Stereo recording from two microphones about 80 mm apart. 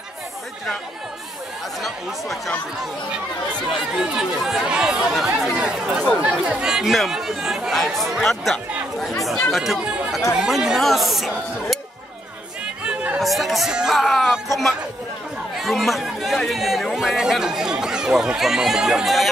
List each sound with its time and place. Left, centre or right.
1.8 s speech: centre
3.9 s speech: centre
12.8 s chatter: centre
13.2 s speech: centre